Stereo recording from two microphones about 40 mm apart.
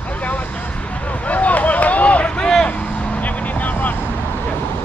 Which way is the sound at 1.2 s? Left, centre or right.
Left.